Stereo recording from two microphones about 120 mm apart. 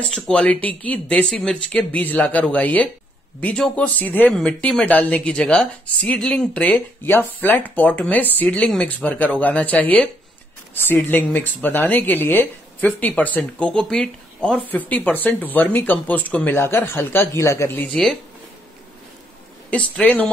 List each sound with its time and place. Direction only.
0.1 s speech: 10° left (ahead or behind)
19.7 s speech: 10° left (ahead or behind)